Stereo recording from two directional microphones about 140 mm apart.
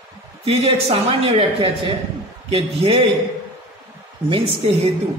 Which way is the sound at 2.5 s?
40° right (ahead or behind).